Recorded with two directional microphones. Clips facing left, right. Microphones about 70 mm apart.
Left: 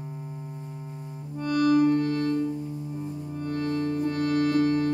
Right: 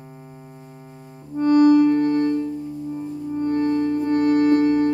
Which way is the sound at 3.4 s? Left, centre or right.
Right.